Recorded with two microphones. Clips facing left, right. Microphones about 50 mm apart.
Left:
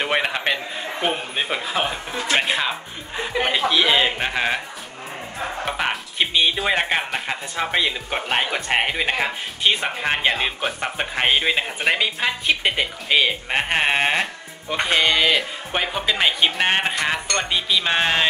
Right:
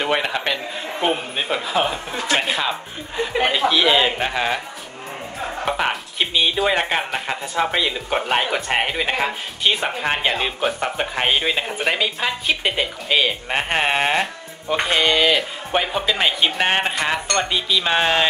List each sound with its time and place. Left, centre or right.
0.0 s a man's voice: centre
5.7 s speech: centre